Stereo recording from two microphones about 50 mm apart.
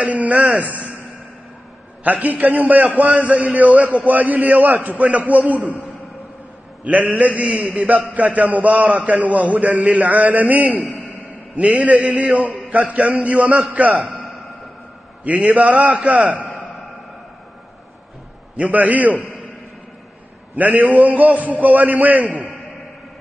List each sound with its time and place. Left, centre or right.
0.0 s a man's voice: right
2.0 s a man's voice: right
6.8 s a man's voice: right
15.2 s a man's voice: right
18.6 s a man's voice: right
20.5 s a man's voice: right